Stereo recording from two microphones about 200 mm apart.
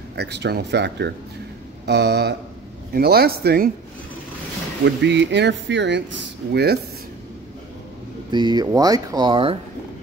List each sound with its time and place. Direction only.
0.1 s speech: 55° right (ahead or behind)
4.8 s speech: 60° right (ahead or behind)
8.3 s speech: 20° right (ahead or behind)